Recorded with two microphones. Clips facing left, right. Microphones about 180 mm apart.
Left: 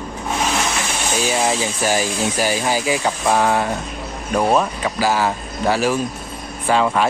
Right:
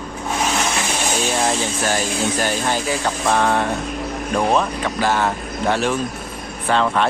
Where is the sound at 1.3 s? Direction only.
5° left (ahead or behind).